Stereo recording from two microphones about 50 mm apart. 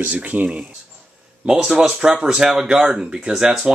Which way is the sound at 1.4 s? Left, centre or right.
Centre.